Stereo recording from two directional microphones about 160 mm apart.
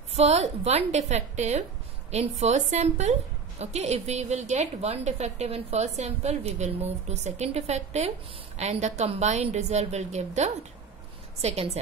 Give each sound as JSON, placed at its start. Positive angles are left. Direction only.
{"t": 0.1, "sound": "a woman's voice", "side_deg": -40}